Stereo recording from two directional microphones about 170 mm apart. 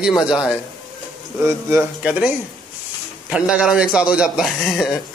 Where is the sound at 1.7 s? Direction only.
5° right (ahead or behind).